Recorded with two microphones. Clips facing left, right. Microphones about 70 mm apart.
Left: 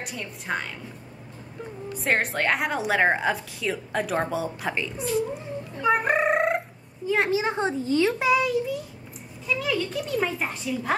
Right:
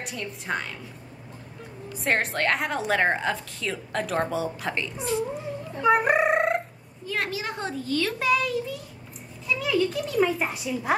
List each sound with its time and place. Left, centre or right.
0.0 s a woman's voice: centre
2.0 s a woman's voice: centre
5.8 s fowl: centre
7.1 s a child's voice: left; by 11.0 s centre